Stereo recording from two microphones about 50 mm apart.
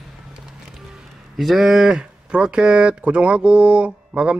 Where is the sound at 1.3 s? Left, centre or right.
Centre.